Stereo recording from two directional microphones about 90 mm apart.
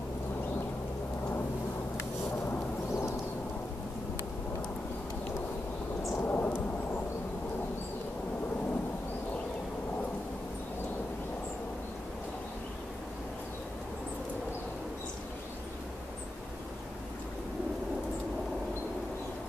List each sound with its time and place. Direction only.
2.9 s thunder: 30° left (ahead or behind)
6.2 s thunder: 20° left (ahead or behind)